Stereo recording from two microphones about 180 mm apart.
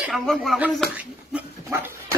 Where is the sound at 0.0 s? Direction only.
Centre (ahead or behind).